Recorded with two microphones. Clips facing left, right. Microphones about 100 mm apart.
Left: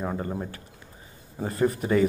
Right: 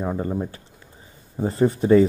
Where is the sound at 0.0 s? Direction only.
25° right (ahead or behind).